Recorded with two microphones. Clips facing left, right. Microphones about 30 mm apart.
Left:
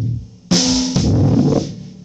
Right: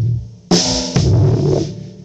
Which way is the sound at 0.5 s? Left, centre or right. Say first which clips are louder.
Even; right.